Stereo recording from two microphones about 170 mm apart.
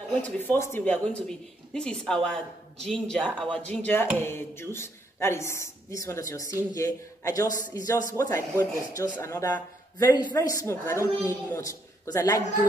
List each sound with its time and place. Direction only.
0.2 s a man's voice: 10° left (ahead or behind)